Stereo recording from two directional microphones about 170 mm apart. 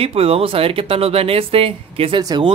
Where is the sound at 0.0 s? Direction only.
35° right (ahead or behind).